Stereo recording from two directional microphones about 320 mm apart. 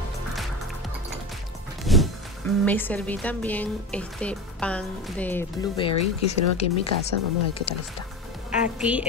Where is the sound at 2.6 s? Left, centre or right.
Centre.